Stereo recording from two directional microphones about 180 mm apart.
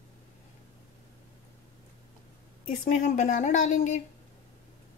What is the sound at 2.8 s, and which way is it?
Speech, 45° left (ahead or behind).